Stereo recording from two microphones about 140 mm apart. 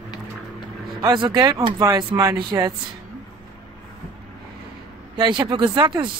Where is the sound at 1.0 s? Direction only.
30° right (ahead or behind).